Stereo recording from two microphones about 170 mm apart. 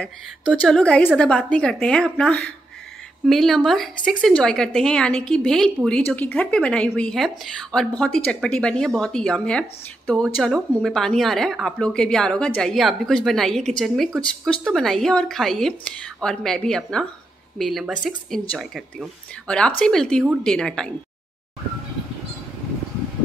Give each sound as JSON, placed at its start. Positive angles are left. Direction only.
{"t": 0.6, "sound": "a woman's voice", "side_deg": 5}